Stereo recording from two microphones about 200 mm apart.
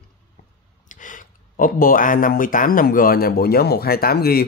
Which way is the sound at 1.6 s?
45° left (ahead or behind).